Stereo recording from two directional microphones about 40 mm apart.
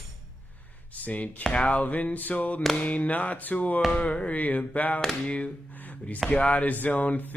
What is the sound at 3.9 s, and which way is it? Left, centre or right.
Music, left.